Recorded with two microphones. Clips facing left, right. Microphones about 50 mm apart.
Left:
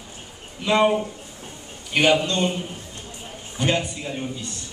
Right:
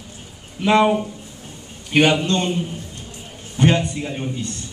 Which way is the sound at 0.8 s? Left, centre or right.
Centre.